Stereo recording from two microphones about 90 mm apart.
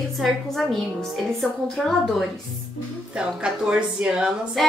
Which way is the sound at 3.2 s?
10° right (ahead or behind).